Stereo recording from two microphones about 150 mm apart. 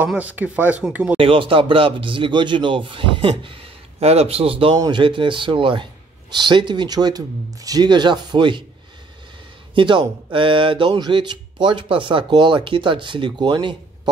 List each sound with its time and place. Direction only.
0.0 s speech: 10° right (ahead or behind)
1.1 s speech: 35° right (ahead or behind)
9.8 s speech: 35° right (ahead or behind)